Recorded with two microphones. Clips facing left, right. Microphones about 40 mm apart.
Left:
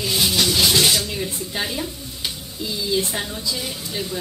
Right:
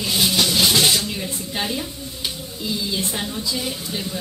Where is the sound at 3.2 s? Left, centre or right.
Centre.